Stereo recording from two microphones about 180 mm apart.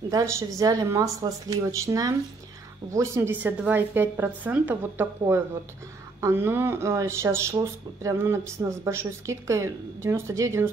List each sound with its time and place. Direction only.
0.1 s speech: 15° right (ahead or behind)